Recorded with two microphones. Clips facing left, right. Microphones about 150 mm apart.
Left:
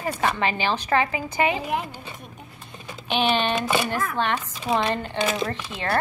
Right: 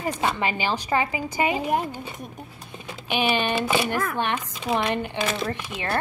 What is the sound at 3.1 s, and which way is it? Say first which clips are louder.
Speech: left 1 dB; 10° right (ahead or behind).